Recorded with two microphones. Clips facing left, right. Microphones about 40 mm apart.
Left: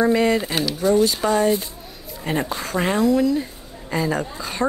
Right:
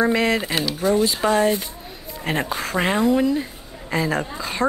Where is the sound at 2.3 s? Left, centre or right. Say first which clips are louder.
Even; right.